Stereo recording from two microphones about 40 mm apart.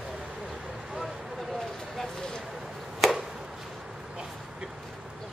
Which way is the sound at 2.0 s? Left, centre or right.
Centre.